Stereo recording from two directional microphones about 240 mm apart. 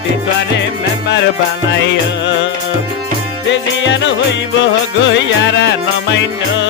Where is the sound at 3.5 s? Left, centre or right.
Left.